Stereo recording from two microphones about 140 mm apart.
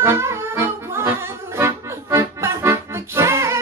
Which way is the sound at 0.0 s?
20° right (ahead or behind).